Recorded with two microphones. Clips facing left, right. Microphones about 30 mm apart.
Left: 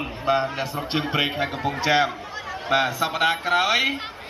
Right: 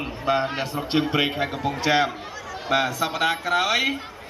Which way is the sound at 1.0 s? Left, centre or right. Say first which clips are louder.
Even; centre.